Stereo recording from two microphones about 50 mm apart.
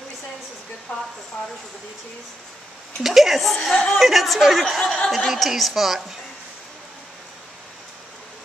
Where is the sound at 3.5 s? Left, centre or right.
Centre.